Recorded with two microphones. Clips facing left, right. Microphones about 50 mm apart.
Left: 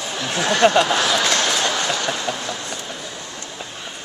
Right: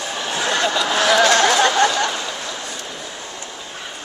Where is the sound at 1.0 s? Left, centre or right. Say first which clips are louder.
Right 5 dB; right.